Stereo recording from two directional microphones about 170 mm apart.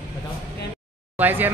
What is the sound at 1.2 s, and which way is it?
Speech, 10° right (ahead or behind).